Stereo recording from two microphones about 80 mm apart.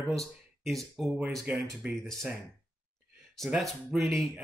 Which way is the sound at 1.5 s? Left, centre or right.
Centre.